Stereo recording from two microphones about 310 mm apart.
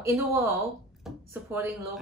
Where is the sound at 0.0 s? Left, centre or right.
Centre.